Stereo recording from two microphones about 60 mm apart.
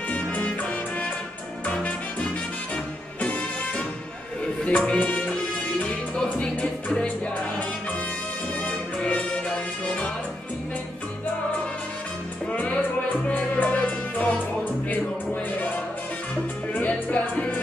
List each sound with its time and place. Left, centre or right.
0.1 s music: centre
8.5 s music: centre
12.5 s music: left
16.7 s music: left